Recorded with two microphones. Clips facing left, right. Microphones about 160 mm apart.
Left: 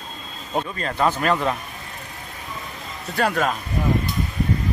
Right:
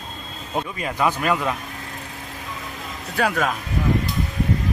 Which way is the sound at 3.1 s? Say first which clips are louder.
Even; centre (ahead or behind).